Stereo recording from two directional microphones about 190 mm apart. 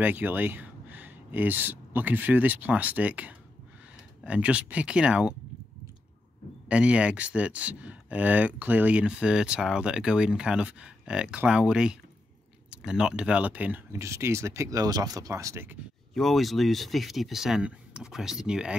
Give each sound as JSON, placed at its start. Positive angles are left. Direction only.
{"t": 0.0, "sound": "speech", "side_deg": -10}
{"t": 6.7, "sound": "speech", "side_deg": -5}
{"t": 16.1, "sound": "speech", "side_deg": 0}